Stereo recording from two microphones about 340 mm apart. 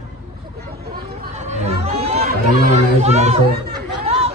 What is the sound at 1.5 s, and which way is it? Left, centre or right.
Chatter, centre.